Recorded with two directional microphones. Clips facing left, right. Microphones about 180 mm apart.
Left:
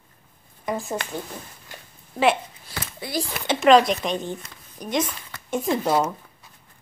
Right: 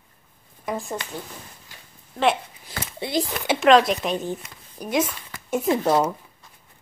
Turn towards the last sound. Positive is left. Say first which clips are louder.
# right 2 dB
turn(degrees=-5)  # may be behind; listen again after turning